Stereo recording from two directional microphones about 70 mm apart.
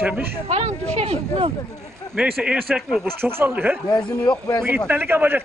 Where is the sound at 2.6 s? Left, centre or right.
Centre.